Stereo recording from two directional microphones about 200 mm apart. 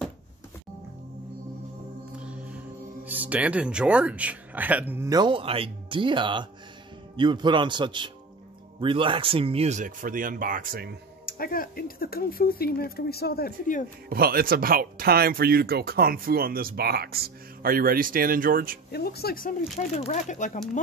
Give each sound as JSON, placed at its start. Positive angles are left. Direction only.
{"t": 2.1, "sound": "music", "side_deg": -5}
{"t": 3.1, "sound": "a man's voice", "side_deg": -10}
{"t": 11.2, "sound": "speech", "side_deg": 45}
{"t": 14.0, "sound": "speech", "side_deg": -45}
{"t": 18.9, "sound": "speech", "side_deg": 55}